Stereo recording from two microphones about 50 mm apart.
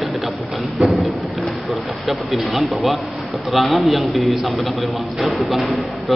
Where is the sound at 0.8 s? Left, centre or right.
Right.